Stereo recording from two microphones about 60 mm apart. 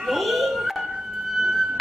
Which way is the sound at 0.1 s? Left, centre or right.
Centre.